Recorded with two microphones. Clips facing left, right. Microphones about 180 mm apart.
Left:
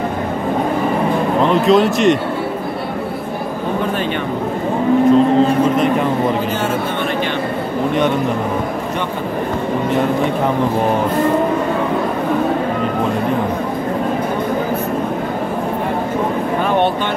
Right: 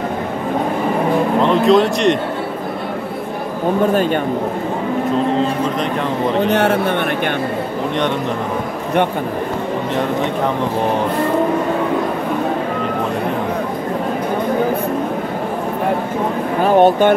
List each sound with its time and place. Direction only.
1.4 s speech: centre (ahead or behind)
6.5 s a man's voice: 65° right (ahead or behind)
16.6 s speech: 40° right (ahead or behind)